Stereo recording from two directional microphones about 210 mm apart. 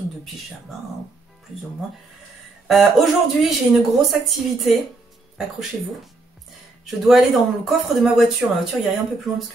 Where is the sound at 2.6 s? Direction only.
Centre (ahead or behind).